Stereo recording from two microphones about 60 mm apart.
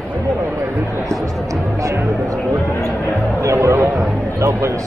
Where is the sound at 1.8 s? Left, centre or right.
Right.